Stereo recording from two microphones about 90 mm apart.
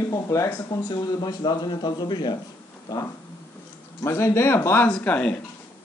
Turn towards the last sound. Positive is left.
turn(degrees=15)  # may be behind; listen again after turning